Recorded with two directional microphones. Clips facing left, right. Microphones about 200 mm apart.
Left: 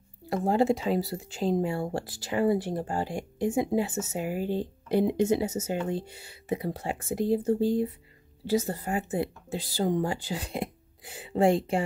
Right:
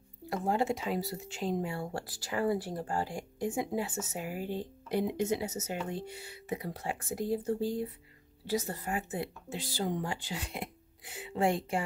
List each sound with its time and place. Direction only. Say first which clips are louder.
0.3 s speech: left 6 dB; 30° left (ahead or behind)